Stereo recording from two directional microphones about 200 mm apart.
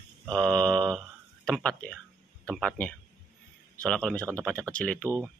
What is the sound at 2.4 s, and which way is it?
Speech, 5° left (ahead or behind).